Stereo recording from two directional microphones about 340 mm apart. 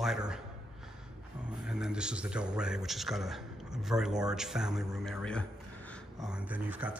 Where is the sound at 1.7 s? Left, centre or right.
Centre.